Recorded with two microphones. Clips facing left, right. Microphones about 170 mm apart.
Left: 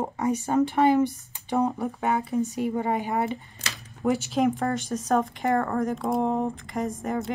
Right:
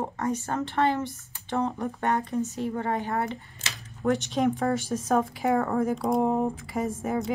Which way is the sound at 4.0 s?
5° left (ahead or behind).